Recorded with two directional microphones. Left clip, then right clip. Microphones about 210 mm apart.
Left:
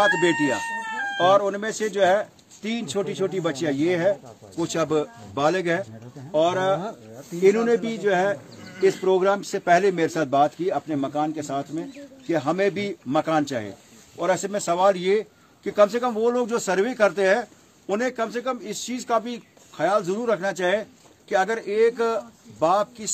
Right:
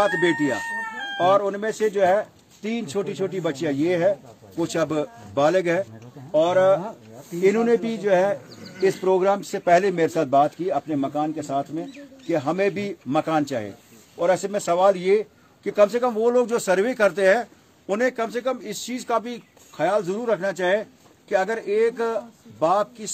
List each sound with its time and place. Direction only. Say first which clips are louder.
0.0 s a man's voice: left 1 dB; centre (ahead or behind)